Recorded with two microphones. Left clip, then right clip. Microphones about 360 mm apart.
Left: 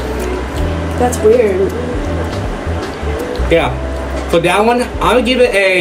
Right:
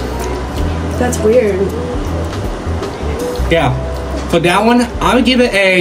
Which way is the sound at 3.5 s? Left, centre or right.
Centre.